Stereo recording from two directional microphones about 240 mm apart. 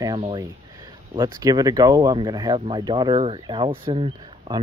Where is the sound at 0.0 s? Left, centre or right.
Centre.